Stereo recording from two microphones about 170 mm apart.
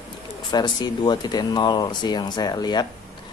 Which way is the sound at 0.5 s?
25° left (ahead or behind).